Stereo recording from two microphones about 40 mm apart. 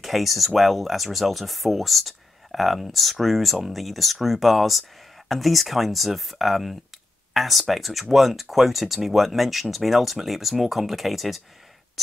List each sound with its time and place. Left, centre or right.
0.0 s speech: centre